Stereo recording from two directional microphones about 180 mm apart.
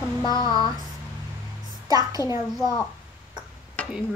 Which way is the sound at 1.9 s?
20° right (ahead or behind).